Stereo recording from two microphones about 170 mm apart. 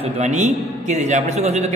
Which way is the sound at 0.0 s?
45° right (ahead or behind).